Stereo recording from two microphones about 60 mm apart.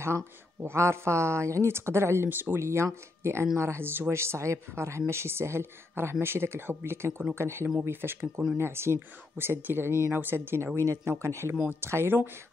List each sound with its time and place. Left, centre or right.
0.0 s speech: right
2.2 s speech: right
2.6 s speech: right